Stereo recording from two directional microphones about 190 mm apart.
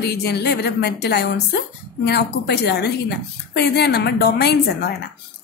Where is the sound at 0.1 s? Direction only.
60° left (ahead or behind).